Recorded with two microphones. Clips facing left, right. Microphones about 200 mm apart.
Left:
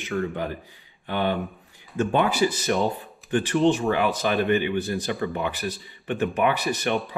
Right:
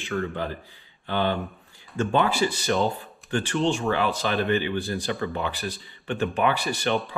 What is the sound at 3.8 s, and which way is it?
Speech, 15° left (ahead or behind).